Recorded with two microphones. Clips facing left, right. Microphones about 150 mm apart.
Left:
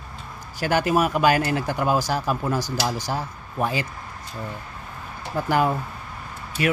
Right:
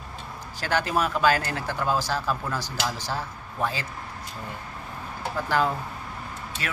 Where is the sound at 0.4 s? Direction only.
10° left (ahead or behind).